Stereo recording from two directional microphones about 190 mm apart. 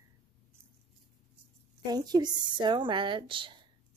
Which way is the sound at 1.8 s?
20° right (ahead or behind).